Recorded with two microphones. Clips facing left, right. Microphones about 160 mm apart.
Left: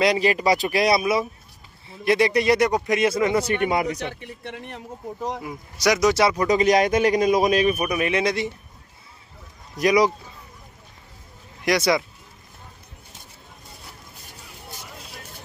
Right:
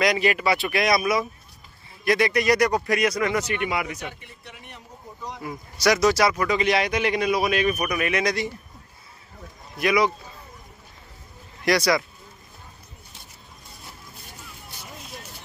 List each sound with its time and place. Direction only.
0.0 s a man's voice: 30° left (ahead or behind)
3.5 s a man's voice: 40° left (ahead or behind)
4.4 s speech: 90° left
5.4 s speech: 15° left (ahead or behind)
6.2 s a man's voice: 35° left (ahead or behind)
7.6 s a man's voice: 25° left (ahead or behind)
9.8 s a man's voice: 40° left (ahead or behind)
11.6 s a man's voice: 20° left (ahead or behind)